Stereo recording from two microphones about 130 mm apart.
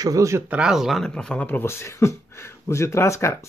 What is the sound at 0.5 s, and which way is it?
Speech, 5° right (ahead or behind).